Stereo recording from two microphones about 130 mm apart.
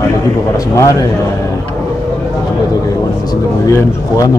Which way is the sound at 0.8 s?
25° left (ahead or behind).